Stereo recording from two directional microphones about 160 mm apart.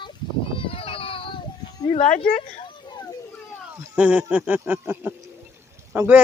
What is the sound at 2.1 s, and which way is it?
Speech, 50° left (ahead or behind).